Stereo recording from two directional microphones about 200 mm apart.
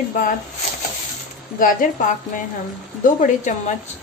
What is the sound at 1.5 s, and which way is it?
Speech, 40° left (ahead or behind).